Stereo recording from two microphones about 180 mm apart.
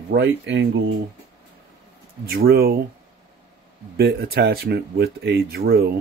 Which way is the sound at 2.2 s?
60° right (ahead or behind).